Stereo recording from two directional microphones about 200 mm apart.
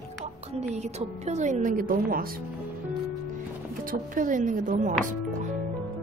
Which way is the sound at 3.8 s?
45° right (ahead or behind).